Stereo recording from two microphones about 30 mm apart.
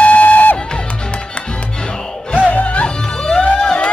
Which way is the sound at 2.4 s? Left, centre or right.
Left.